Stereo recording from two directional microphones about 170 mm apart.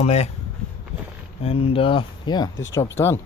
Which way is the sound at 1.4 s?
35° left (ahead or behind).